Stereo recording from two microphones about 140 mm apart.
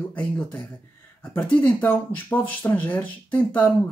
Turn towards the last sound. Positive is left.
turn(degrees=10)  # may be behind; listen again after turning